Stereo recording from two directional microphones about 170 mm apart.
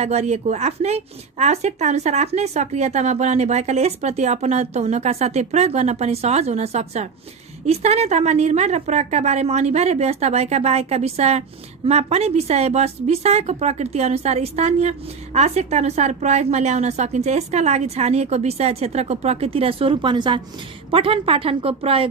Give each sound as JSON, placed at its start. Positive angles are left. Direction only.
{"t": 0.0, "sound": "a woman's voice", "side_deg": -40}